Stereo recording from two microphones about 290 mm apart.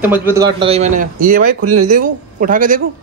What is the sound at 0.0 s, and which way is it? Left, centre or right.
A man's voice, centre.